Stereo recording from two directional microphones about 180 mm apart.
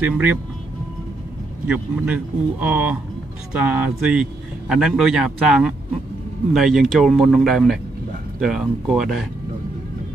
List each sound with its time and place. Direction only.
0.0 s speech: 10° right (ahead or behind)
1.7 s a man's voice: 5° right (ahead or behind)